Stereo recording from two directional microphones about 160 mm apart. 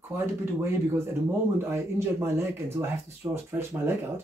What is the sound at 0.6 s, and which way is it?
Speech, 15° right (ahead or behind).